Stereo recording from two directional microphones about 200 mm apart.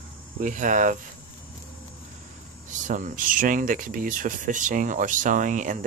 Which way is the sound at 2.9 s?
40° right (ahead or behind).